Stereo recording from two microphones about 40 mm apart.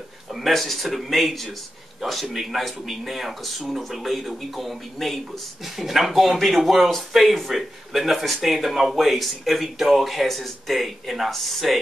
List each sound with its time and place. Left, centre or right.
0.3 s speech: centre